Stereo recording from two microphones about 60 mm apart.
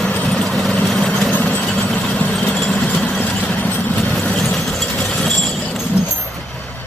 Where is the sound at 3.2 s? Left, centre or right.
Left.